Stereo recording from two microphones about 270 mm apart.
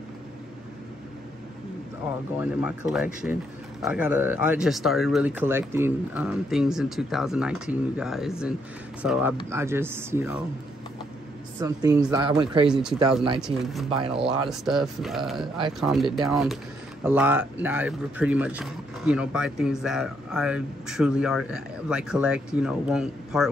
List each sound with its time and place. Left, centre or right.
2.3 s speech: centre
11.6 s speech: centre
12.6 s speech: centre
13.8 s speech: centre
14.5 s speech: centre